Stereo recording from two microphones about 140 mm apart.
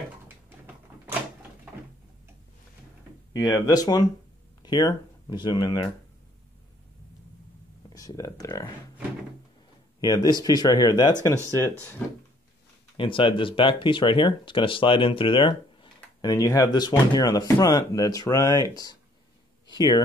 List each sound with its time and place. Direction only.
3.3 s speech: 25° left (ahead or behind)
7.9 s speech: 25° left (ahead or behind)
9.9 s speech: 25° left (ahead or behind)
11.4 s speech: 20° left (ahead or behind)
12.9 s speech: 35° left (ahead or behind)